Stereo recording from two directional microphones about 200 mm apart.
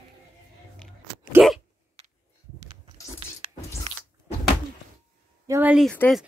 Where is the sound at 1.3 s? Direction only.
Centre (ahead or behind).